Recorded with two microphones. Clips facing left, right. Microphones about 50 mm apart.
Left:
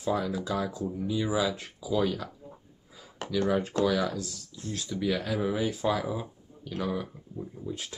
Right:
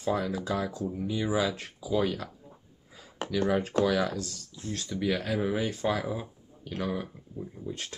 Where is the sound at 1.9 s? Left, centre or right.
Centre.